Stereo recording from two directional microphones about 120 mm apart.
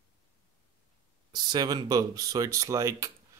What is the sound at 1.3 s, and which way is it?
Speech, 35° right (ahead or behind).